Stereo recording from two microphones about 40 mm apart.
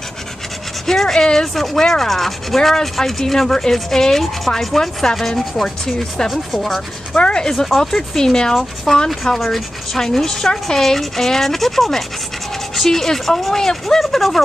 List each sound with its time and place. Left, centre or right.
0.8 s speech: centre
7.2 s speech: left
7.5 s speech: centre
9.2 s speech: centre